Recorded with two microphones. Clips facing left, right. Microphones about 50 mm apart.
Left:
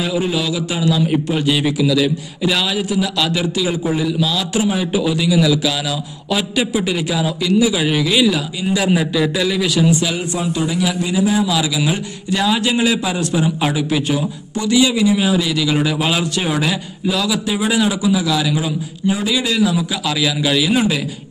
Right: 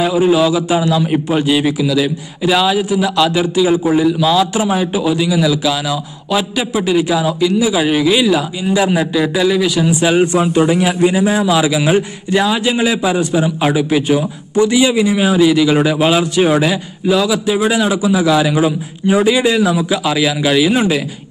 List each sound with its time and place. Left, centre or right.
0.0 s a man's voice: centre
10.0 s a man's voice: right; by 21.0 s centre